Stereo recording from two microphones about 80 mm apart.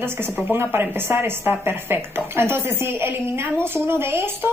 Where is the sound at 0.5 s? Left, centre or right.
Right.